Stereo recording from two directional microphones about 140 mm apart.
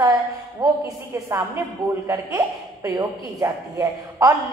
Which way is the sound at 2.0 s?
20° right (ahead or behind).